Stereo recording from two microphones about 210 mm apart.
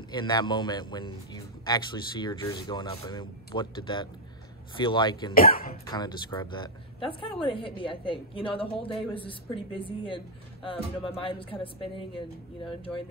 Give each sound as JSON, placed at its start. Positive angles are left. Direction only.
{"t": 0.1, "sound": "a woman's voice", "side_deg": 20}
{"t": 5.3, "sound": "speech", "side_deg": 45}
{"t": 5.9, "sound": "a woman's voice", "side_deg": 20}